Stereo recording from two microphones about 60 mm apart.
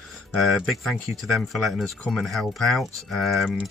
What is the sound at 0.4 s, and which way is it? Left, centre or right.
Speech, centre.